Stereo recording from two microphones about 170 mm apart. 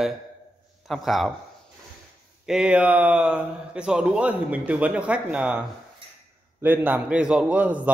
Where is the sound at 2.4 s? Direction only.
5° right (ahead or behind).